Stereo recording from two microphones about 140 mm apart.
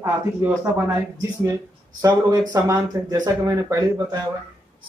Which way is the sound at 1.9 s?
25° right (ahead or behind).